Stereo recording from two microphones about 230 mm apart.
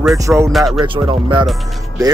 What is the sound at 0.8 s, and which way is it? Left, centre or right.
Speech, right.